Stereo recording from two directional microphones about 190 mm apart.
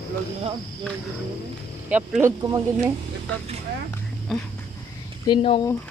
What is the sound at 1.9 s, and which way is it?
Speech, 10° right (ahead or behind).